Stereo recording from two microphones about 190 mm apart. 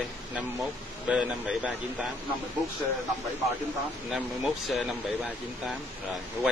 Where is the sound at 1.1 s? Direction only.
5° right (ahead or behind).